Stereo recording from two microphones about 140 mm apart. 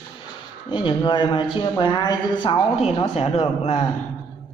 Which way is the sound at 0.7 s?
35° left (ahead or behind).